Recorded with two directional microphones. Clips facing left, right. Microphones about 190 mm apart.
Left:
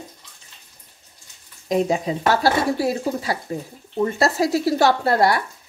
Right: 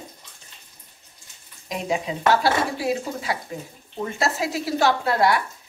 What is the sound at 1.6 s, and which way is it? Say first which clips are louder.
A woman's voice: left 6 dB; 40° left (ahead or behind).